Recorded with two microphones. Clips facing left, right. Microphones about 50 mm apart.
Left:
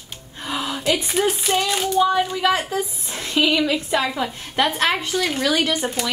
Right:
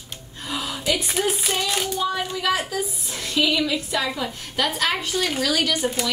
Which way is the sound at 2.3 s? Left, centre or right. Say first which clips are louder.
Left 3 dB; centre.